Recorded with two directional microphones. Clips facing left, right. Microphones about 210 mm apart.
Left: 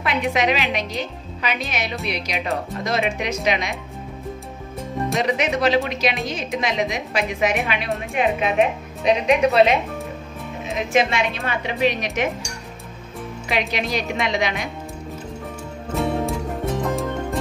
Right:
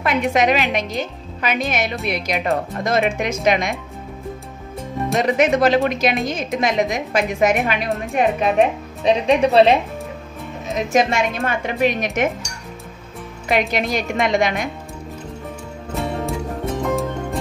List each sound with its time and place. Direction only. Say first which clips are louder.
0.3 s a woman's voice: right 3 dB; 45° right (ahead or behind)
5.2 s a woman's voice: right 5 dB; 50° right (ahead or behind)
9.0 s speech: right 2 dB; 30° right (ahead or behind)
10.7 s a woman's voice: right 2 dB; 40° right (ahead or behind)
13.5 s a woman's voice: right 4 dB; 50° right (ahead or behind)
16.0 s music: left 1 dB; centre (ahead or behind)